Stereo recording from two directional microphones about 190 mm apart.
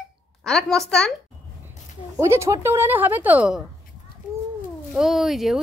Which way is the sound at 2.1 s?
15° right (ahead or behind).